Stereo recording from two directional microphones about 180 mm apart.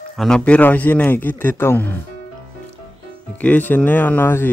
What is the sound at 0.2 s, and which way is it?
A man's voice, 5° left (ahead or behind).